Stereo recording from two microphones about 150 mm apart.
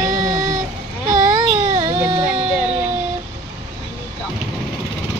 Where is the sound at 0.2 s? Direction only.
25° right (ahead or behind).